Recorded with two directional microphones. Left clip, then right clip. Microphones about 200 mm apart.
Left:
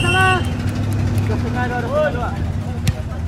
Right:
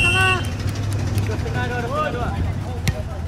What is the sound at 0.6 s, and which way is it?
Vehicle, 40° left (ahead or behind).